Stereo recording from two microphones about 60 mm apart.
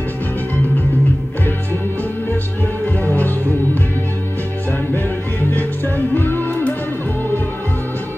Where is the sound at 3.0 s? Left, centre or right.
Left.